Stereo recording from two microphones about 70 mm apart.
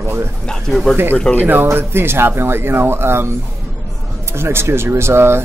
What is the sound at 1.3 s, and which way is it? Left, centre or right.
Speech, centre.